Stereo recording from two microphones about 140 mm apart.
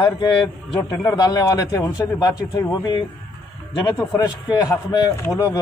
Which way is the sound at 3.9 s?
15° left (ahead or behind).